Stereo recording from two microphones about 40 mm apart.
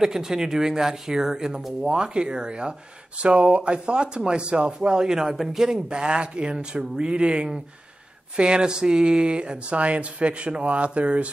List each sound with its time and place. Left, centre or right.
0.0 s speech: centre; by 11.2 s right